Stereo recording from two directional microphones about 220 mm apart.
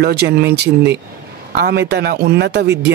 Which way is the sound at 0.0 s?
45° right (ahead or behind).